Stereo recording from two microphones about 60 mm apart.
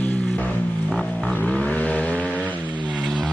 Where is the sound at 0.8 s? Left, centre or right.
Left.